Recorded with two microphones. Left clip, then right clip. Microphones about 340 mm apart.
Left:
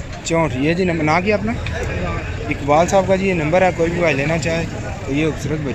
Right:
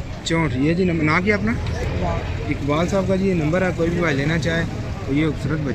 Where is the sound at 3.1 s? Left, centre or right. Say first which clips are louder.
Left 4 dB; left.